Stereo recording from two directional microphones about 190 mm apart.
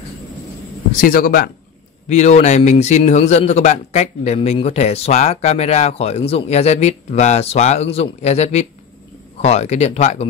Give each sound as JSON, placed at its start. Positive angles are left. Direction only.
{"t": 0.9, "sound": "speech", "side_deg": 50}
{"t": 2.0, "sound": "a man's voice", "side_deg": 35}